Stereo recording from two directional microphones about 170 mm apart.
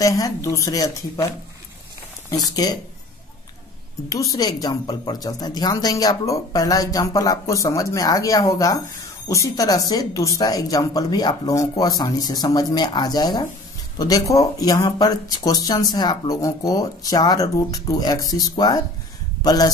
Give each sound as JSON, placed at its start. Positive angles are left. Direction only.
{"t": 0.0, "sound": "speech", "side_deg": 20}
{"t": 2.5, "sound": "speech", "side_deg": 25}
{"t": 4.1, "sound": "speech", "side_deg": 20}